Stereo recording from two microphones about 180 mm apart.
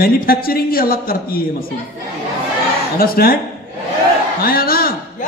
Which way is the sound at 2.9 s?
55° left (ahead or behind).